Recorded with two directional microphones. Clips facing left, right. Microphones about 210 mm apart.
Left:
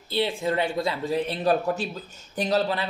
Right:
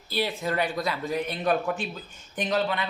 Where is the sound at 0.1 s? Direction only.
25° left (ahead or behind).